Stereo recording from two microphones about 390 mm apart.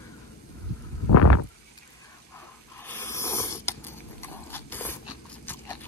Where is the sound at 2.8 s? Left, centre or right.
Centre.